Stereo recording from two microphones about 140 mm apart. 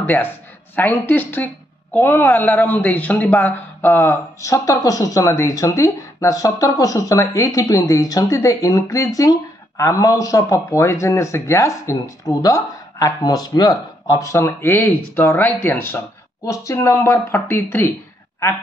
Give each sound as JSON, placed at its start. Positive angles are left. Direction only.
{"t": 0.0, "sound": "speech", "side_deg": 15}